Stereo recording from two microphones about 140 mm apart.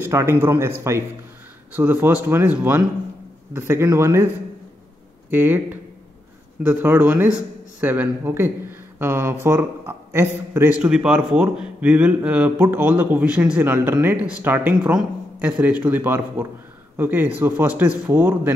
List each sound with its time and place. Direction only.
0.0 s speech: 20° right (ahead or behind)
5.3 s speech: 15° right (ahead or behind)